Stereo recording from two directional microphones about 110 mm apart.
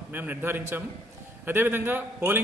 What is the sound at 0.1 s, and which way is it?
A man's voice, 15° right (ahead or behind).